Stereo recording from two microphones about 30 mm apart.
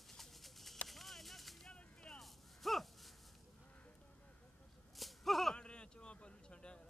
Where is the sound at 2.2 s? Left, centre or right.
Centre.